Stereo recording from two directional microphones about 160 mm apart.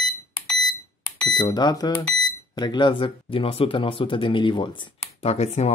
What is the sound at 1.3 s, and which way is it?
Speech, 25° left (ahead or behind).